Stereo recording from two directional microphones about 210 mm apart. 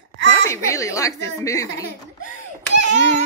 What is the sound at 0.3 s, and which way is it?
Speech, 15° left (ahead or behind).